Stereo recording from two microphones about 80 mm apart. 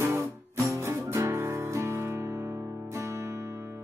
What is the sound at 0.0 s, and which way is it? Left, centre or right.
Music, right.